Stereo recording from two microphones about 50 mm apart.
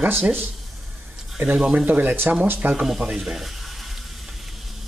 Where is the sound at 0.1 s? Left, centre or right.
Right.